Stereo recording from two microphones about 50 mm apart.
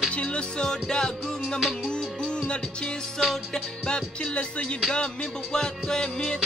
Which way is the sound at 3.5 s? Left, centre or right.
Centre.